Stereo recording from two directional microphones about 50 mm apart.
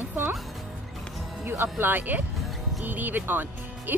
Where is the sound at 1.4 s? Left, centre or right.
Right.